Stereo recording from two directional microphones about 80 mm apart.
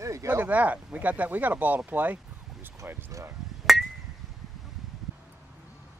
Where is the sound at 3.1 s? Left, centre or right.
Right.